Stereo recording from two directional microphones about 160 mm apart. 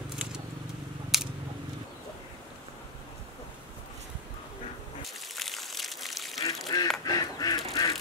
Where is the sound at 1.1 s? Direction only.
Centre (ahead or behind).